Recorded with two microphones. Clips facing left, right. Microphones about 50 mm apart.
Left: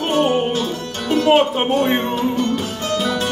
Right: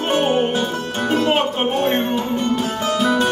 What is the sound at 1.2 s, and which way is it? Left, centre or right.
Music, centre.